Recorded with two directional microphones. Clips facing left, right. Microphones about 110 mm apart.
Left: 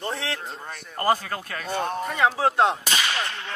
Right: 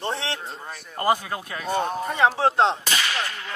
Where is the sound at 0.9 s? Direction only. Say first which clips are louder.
Even; 15° right (ahead or behind).